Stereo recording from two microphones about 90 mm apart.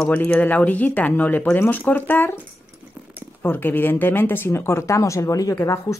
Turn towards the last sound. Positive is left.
turn(degrees=35)  # may be behind; listen again after turning